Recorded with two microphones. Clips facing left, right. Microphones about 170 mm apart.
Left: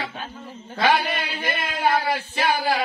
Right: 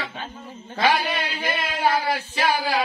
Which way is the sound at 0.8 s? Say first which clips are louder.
Left 1 dB; 55° left (ahead or behind).